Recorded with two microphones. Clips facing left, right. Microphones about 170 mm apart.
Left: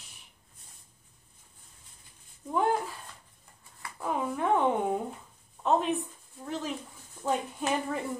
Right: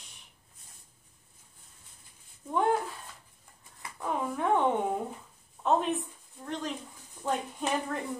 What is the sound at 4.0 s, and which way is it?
A woman's voice, centre (ahead or behind).